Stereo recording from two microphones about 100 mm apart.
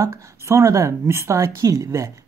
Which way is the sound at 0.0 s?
30° right (ahead or behind).